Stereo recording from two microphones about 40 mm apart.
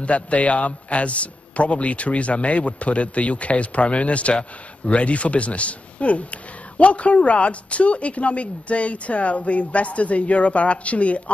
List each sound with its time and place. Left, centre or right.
0.0 s a man's voice: left